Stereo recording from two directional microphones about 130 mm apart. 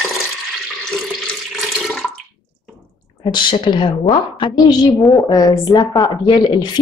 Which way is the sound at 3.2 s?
35° left (ahead or behind).